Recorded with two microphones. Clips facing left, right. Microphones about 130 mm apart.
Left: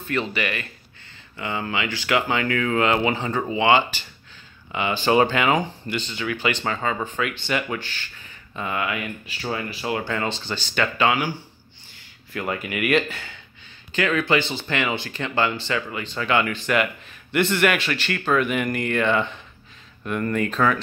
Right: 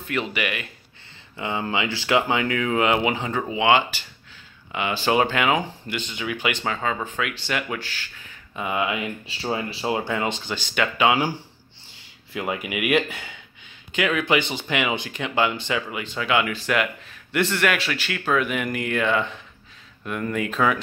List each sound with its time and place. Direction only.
0.1 s speech: 10° right (ahead or behind)
1.3 s speech: 20° right (ahead or behind); by 8.1 s 5° right (ahead or behind)
8.5 s speech: 15° right (ahead or behind)
10.0 s speech: 15° right (ahead or behind)
12.3 s speech: 15° right (ahead or behind)